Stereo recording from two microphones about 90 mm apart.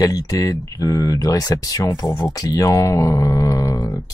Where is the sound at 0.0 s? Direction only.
40° left (ahead or behind).